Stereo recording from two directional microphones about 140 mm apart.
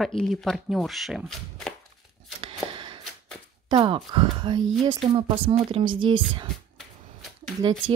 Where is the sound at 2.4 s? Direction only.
35° right (ahead or behind).